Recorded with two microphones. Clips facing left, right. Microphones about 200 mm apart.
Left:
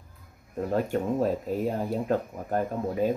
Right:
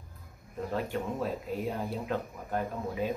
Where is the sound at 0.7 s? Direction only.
45° left (ahead or behind).